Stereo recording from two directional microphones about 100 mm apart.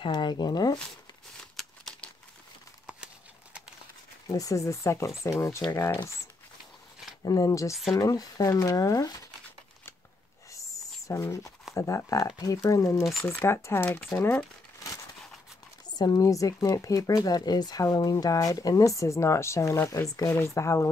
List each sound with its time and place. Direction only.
0.0 s speech: 50° left (ahead or behind)
1.6 s crumpling: 5° left (ahead or behind)
4.3 s speech: 35° left (ahead or behind)
7.2 s speech: 35° left (ahead or behind)
7.7 s speech: centre (ahead or behind)
8.0 s speech: 40° left (ahead or behind)
10.8 s a sound: 35° left (ahead or behind)
11.1 s speech: 30° left (ahead or behind)
14.1 s crumpling: 20° left (ahead or behind)
16.0 s speech: 40° left (ahead or behind)